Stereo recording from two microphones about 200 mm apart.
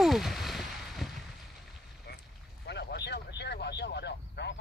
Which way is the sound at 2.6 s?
55° left (ahead or behind).